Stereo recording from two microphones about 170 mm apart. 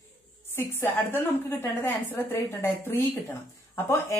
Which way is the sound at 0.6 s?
15° left (ahead or behind).